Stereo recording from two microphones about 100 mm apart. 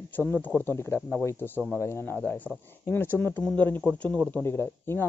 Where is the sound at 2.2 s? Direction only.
15° left (ahead or behind).